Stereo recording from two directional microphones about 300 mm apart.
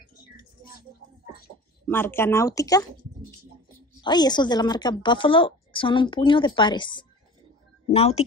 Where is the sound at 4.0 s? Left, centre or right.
Centre.